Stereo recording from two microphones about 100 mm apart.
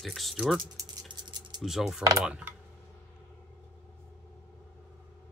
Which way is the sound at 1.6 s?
5° right (ahead or behind).